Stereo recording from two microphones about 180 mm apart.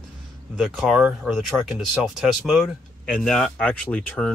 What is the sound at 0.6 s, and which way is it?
Speech, centre (ahead or behind).